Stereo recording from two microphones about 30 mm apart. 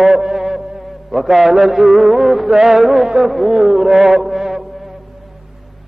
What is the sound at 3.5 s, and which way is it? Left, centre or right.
Music, centre.